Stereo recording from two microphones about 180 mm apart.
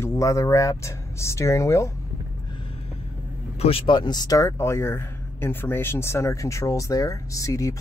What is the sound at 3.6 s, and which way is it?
Speech, 30° left (ahead or behind).